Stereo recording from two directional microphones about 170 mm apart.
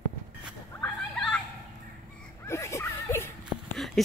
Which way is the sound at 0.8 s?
5° left (ahead or behind).